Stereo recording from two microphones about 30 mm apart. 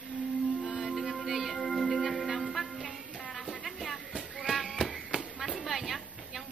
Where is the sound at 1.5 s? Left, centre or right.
Centre.